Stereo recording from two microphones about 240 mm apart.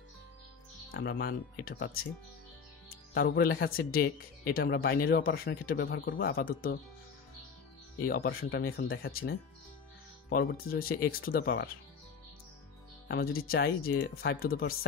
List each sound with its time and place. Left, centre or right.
0.9 s speech: left
2.9 s speech: left
8.1 s speech: left
13.1 s speech: left